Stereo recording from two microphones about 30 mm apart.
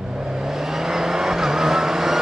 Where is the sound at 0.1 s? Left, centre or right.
Centre.